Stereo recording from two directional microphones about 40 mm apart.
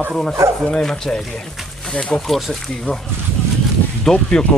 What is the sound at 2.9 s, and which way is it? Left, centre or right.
Speech, left.